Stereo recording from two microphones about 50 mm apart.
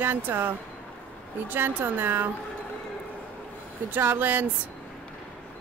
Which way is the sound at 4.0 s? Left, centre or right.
Right.